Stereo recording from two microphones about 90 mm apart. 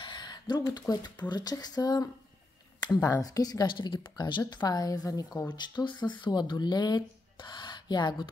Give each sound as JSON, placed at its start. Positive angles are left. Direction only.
{"t": 0.0, "sound": "speech", "side_deg": 55}
{"t": 3.6, "sound": "speech", "side_deg": 65}
{"t": 4.2, "sound": "speech", "side_deg": 50}
{"t": 5.5, "sound": "speech", "side_deg": 60}